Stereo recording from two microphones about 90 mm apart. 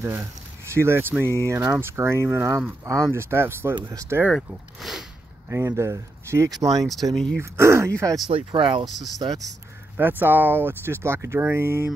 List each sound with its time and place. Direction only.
0.0 s speech: 30° right (ahead or behind)
3.9 s speech: 35° right (ahead or behind)
4.5 s speech: 5° right (ahead or behind)
5.5 s speech: 30° right (ahead or behind)
6.8 s speech: centre (ahead or behind)
7.3 s speech: 30° right (ahead or behind)
8.3 s speech: 80° right
8.8 s speech: centre (ahead or behind)
9.9 s speech: 25° right (ahead or behind)